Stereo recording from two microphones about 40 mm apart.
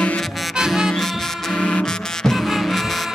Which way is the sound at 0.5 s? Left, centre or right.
Centre.